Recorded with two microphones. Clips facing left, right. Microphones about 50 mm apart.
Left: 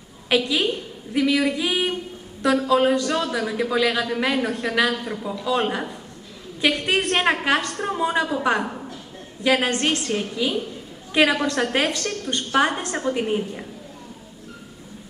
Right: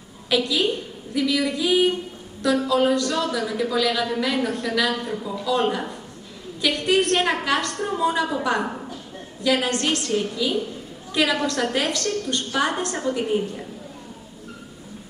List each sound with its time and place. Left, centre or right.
0.3 s female singing: left
2.7 s a woman's voice: left
9.4 s a woman's voice: left
12.5 s female singing: left